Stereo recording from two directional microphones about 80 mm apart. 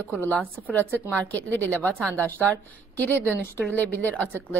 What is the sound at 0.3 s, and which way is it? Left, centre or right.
A woman's voice, centre.